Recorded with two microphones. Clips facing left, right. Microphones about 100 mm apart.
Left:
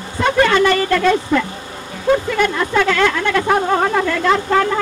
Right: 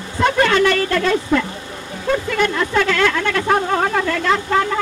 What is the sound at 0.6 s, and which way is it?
Speech, 30° left (ahead or behind).